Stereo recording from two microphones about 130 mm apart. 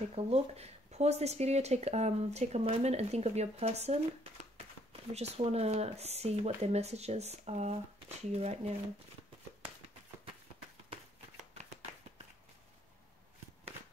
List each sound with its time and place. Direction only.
0.1 s speech: 55° right (ahead or behind)